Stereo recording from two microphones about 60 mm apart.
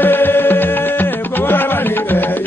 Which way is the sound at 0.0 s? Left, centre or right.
Left.